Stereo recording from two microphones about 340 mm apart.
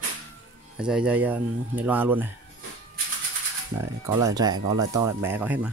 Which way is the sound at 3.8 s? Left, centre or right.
Centre.